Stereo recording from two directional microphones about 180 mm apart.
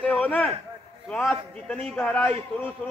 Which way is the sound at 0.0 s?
10° left (ahead or behind).